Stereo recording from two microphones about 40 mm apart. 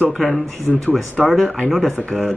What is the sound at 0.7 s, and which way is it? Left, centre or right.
Speech, right.